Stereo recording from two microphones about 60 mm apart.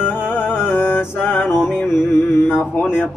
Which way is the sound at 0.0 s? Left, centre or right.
Left.